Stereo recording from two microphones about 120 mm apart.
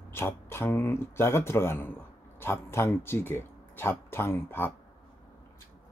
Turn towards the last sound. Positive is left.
turn(degrees=20)  # may be behind; listen again after turning